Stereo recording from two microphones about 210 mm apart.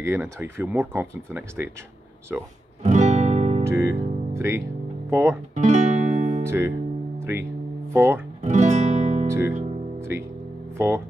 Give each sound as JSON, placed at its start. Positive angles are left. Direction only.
{"t": 0.0, "sound": "speech", "side_deg": -10}
{"t": 2.8, "sound": "guitar", "side_deg": -35}
{"t": 3.6, "sound": "music", "side_deg": -15}
{"t": 4.3, "sound": "speech", "side_deg": -10}
{"t": 5.5, "sound": "music", "side_deg": -35}
{"t": 6.4, "sound": "speech", "side_deg": -10}
{"t": 7.2, "sound": "music", "side_deg": -10}
{"t": 7.9, "sound": "speech", "side_deg": -10}
{"t": 8.4, "sound": "music", "side_deg": -30}
{"t": 9.5, "sound": "speech", "side_deg": -35}
{"t": 9.9, "sound": "music", "side_deg": -10}
{"t": 10.8, "sound": "speech", "side_deg": -10}